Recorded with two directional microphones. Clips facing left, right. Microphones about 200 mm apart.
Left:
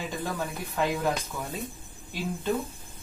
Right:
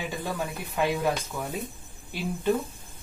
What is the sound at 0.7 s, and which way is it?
Speech, 10° right (ahead or behind).